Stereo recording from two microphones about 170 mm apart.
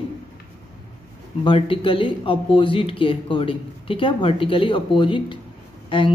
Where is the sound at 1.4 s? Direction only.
30° left (ahead or behind).